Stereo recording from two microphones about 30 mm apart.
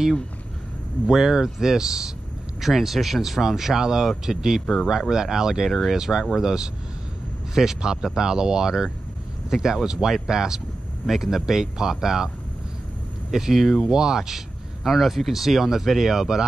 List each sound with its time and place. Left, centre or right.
1.0 s speech: centre
2.6 s speech: centre
5.7 s speech: centre
5.9 s speech: centre
13.3 s speech: centre